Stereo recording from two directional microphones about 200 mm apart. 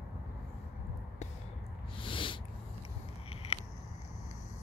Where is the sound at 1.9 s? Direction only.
25° left (ahead or behind).